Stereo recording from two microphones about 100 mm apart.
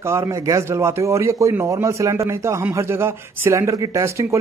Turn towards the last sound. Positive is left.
turn(degrees=-30)  # may be behind; listen again after turning